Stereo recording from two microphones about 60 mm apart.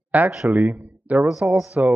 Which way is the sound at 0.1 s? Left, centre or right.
Right.